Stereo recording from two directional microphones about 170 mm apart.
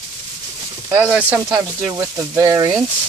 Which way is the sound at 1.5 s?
20° right (ahead or behind).